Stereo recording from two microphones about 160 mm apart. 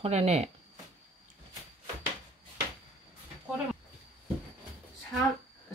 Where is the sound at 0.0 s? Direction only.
40° right (ahead or behind).